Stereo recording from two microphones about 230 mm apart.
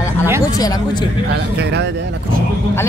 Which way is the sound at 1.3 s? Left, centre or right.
Right.